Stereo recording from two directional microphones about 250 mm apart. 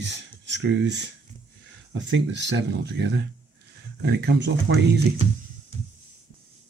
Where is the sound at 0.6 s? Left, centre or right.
Right.